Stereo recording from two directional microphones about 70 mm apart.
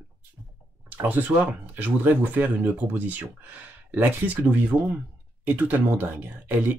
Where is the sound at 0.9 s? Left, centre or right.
Right.